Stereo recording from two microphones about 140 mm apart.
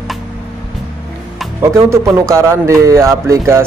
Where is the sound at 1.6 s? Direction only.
20° right (ahead or behind).